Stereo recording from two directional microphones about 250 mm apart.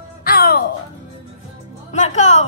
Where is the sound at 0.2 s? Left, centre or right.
Left.